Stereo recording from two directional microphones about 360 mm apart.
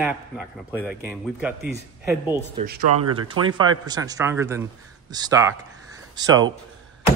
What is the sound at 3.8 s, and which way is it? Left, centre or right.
Speech, centre.